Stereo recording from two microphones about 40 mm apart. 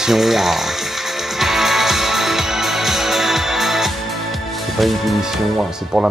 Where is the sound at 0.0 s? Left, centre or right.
Centre.